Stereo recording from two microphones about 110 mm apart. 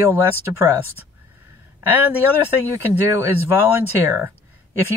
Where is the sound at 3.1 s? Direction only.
20° right (ahead or behind).